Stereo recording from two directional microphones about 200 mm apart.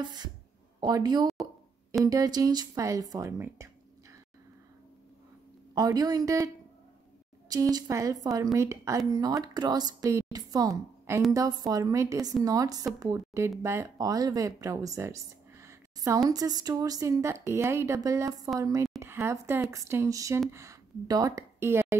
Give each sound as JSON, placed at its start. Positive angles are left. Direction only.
{"t": 0.0, "sound": "a woman's voice", "side_deg": -20}
{"t": 5.8, "sound": "a woman's voice", "side_deg": -20}